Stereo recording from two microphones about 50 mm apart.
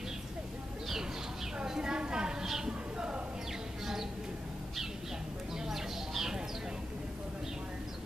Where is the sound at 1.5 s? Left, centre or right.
Centre.